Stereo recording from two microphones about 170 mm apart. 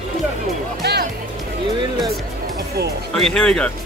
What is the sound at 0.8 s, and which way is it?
Music, 75° right (ahead or behind).